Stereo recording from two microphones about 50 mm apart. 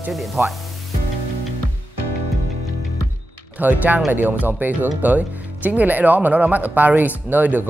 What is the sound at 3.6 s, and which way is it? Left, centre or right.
Speech, right.